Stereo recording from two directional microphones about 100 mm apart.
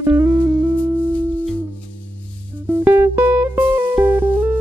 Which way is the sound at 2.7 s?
20° right (ahead or behind).